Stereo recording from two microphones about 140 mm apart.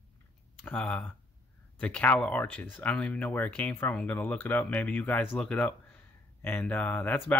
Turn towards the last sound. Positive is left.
turn(degrees=15)  # may be behind; listen again after turning